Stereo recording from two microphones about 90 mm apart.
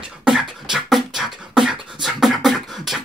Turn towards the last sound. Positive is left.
turn(degrees=0)  # may be behind; listen again after turning